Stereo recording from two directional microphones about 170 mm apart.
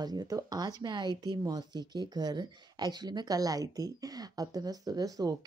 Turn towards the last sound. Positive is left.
turn(degrees=-20)  # may be behind; listen again after turning